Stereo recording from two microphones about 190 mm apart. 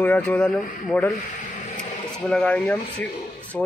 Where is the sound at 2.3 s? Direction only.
5° left (ahead or behind).